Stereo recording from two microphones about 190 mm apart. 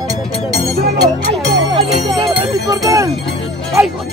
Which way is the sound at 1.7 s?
25° right (ahead or behind).